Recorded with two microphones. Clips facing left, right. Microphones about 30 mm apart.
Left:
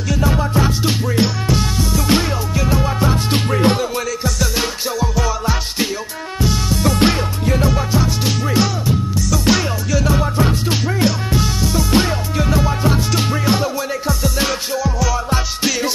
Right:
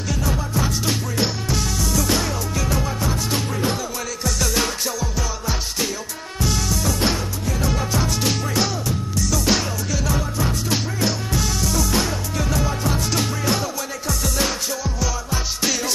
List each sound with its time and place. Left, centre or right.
0.2 s music: left
2.5 s music: centre; by 3.8 s left
6.7 s music: left
7.6 s music: centre
10.0 s music: left
14.8 s music: centre